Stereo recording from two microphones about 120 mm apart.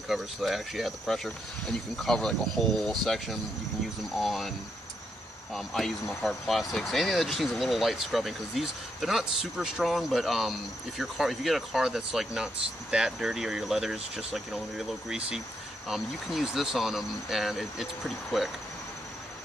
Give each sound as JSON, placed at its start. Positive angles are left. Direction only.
{"t": 0.1, "sound": "speech", "side_deg": 0}
{"t": 5.5, "sound": "speech", "side_deg": 0}